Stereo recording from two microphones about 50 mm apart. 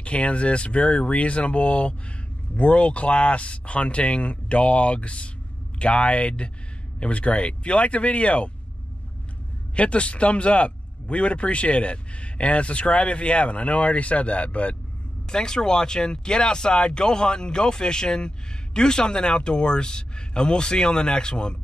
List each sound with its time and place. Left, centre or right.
0.0 s speech: left
9.8 s speech: left
15.2 s speech: centre